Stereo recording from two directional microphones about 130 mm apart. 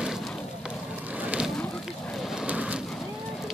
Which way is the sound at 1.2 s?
5° right (ahead or behind).